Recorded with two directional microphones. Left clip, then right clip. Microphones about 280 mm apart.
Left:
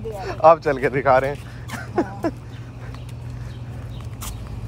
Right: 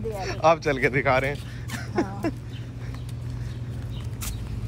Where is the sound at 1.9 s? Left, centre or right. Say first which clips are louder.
Left 4 dB; left.